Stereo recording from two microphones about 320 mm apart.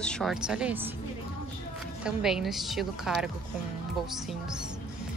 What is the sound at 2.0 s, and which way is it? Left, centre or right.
Speech, centre.